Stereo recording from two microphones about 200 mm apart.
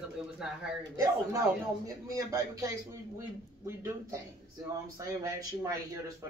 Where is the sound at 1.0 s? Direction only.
15° right (ahead or behind).